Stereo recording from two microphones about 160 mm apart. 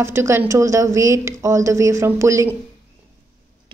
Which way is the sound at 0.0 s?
15° right (ahead or behind).